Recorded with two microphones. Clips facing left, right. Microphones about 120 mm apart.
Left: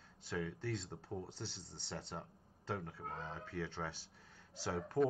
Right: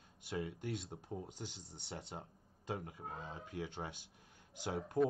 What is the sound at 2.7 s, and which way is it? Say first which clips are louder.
Speech: even; 15° right (ahead or behind).